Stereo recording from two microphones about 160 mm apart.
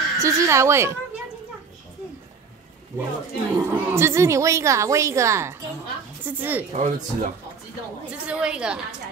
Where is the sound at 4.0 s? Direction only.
15° right (ahead or behind).